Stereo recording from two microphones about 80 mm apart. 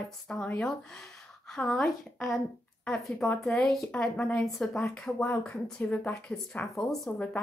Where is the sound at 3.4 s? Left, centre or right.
Centre.